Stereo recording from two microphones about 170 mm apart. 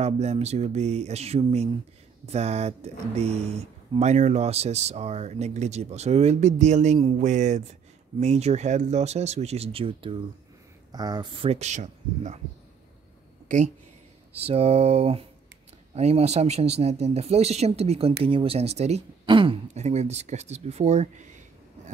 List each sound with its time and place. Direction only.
0.0 s speech: 40° right (ahead or behind)
7.2 s a sound: 45° right (ahead or behind)
8.2 s speech: 40° right (ahead or behind)
10.9 s speech: 25° right (ahead or behind); by 12.4 s 45° right (ahead or behind)
14.3 s speech: 35° right (ahead or behind)